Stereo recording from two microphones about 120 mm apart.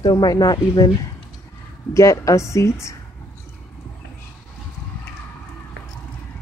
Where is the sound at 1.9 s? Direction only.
25° left (ahead or behind).